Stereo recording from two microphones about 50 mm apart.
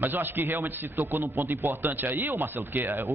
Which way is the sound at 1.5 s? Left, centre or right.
Right.